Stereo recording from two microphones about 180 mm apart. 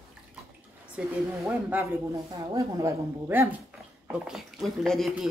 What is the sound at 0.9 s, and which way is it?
Speech, 10° right (ahead or behind).